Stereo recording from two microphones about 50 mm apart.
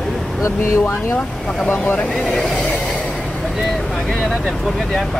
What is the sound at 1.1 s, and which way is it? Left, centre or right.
Speech, left.